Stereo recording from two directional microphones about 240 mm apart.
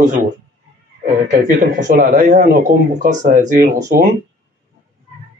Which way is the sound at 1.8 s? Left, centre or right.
Right.